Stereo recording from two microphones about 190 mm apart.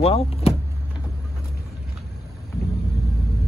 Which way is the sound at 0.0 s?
30° left (ahead or behind).